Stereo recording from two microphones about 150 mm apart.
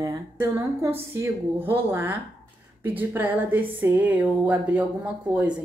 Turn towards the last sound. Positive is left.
turn(degrees=-10)  # may be behind; listen again after turning